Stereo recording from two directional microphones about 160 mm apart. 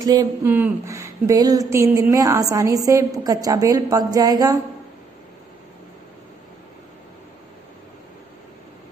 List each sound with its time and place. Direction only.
0.0 s a woman's voice: 25° right (ahead or behind)
0.5 s a woman's voice: 10° right (ahead or behind)